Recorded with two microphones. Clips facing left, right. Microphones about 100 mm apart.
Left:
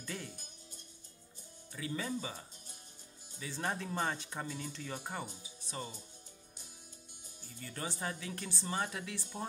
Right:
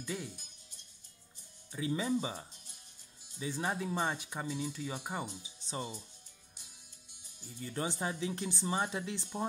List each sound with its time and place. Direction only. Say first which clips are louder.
0.0 s speech: right 4 dB; 10° right (ahead or behind)
1.7 s speech: right 5 dB; 15° right (ahead or behind)
5.4 s speech: right 3 dB; 20° right (ahead or behind)
7.6 s speech: right 4 dB; 20° right (ahead or behind)